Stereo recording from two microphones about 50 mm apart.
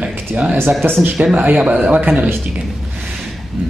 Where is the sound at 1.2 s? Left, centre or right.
Right.